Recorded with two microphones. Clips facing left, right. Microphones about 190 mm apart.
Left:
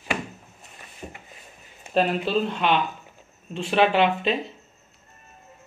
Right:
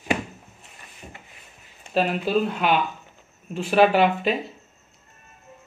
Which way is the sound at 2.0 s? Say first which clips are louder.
Even; 5° right (ahead or behind).